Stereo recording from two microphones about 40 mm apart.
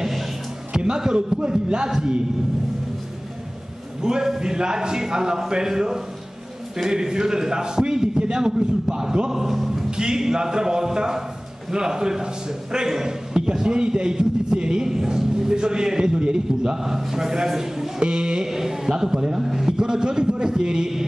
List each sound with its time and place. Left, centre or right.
0.7 s a sound: centre
1.9 s a man's voice: centre
4.0 s a man's voice: centre
9.3 s a man's voice: centre
9.8 s a man's voice: centre
19.4 s a sound: centre